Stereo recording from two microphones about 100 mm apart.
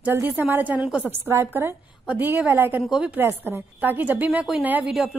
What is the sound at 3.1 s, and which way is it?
Speech, 25° right (ahead or behind).